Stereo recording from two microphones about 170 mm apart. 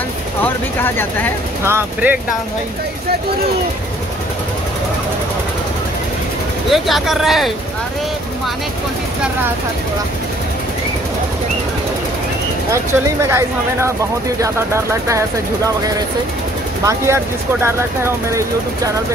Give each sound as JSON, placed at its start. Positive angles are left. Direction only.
{"t": 0.4, "sound": "speech", "side_deg": 10}
{"t": 1.6, "sound": "speech", "side_deg": -15}
{"t": 6.7, "sound": "speech", "side_deg": 0}
{"t": 12.7, "sound": "speech", "side_deg": -15}